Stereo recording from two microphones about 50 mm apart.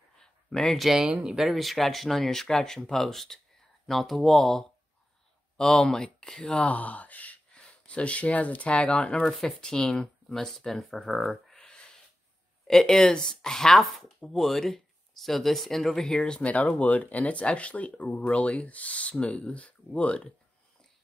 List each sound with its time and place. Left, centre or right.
0.2 s a sound: centre
0.7 s speech: centre
6.6 s speech: left
9.2 s speech: centre
11.5 s a sound: centre
12.6 s speech: centre
16.3 s speech: left